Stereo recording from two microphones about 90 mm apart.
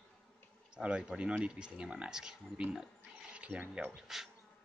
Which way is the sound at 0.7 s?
10° right (ahead or behind).